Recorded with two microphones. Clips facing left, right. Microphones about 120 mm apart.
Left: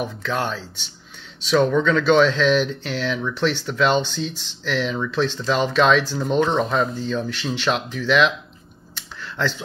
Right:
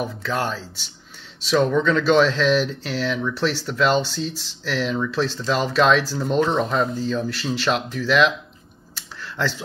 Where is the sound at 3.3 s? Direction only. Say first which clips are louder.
Left 1 dB; 35° right (ahead or behind).